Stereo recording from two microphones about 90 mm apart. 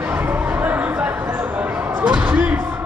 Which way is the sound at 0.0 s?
20° right (ahead or behind).